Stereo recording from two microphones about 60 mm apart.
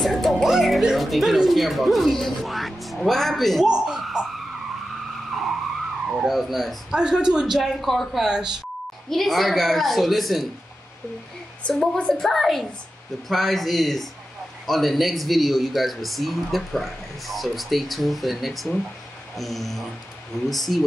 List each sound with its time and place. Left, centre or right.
0.0 s speech: centre
3.6 s bird: centre
5.3 s vehicle: centre
6.0 s speech: centre
6.9 s speech: centre
9.1 s speech: centre
11.7 s speech: centre